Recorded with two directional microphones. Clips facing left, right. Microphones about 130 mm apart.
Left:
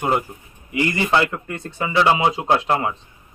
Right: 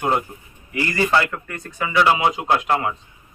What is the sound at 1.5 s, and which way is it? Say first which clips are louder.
Speech: right 1 dB; 30° left (ahead or behind).